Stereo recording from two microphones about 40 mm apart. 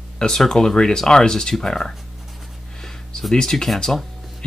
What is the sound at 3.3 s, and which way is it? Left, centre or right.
Speech, centre.